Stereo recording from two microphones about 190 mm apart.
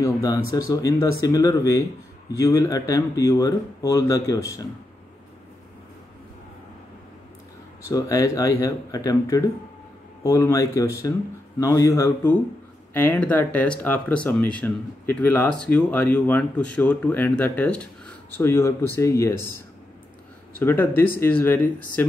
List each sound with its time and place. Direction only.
0.0 s speech: 20° left (ahead or behind)
7.9 s speech: 20° left (ahead or behind)
20.5 s speech: 10° left (ahead or behind)